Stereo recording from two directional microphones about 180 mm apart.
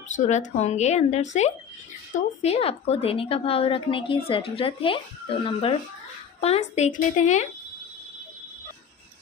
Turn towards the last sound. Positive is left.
turn(degrees=40)  # may be behind; listen again after turning